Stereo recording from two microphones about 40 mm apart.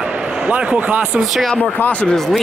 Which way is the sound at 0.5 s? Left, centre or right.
Right.